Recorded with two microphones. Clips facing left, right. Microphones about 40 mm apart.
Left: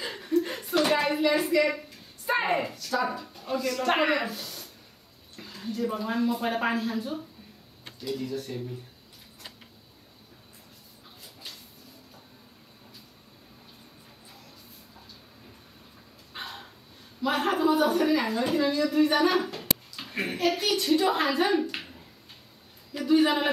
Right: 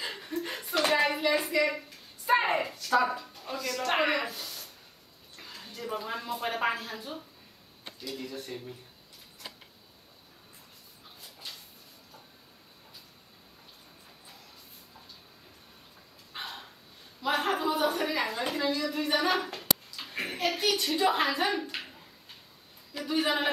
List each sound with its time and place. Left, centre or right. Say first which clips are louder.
0.0 s chuckle: left 2 dB; centre
0.4 s slap: left 3 dB; centre
2.2 s a woman's voice: even; centre
2.7 s speech: right 2 dB; centre
3.3 s a woman's voice: left 5 dB; centre
8.3 s speech: left 6 dB; right
16.3 s a sound: left 1 dB; centre
17.2 s a woman's voice: left 3 dB; centre
19.6 s a sound: even; centre
20.8 s a woman's voice: left 4 dB; centre
22.9 s a woman's voice: left 6 dB; centre